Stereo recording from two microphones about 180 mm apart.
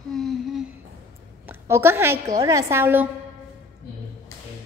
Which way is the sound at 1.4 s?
10° right (ahead or behind).